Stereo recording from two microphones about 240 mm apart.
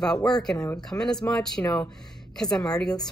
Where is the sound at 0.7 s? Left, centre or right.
Centre.